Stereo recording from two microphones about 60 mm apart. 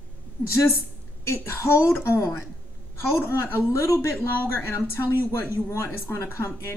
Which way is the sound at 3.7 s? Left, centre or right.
Left.